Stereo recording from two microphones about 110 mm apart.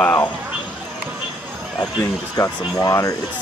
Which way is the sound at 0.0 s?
20° left (ahead or behind).